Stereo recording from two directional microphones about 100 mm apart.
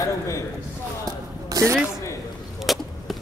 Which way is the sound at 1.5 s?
35° right (ahead or behind).